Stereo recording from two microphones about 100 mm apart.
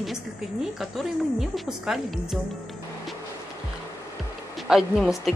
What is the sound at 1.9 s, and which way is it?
Speech, 5° right (ahead or behind).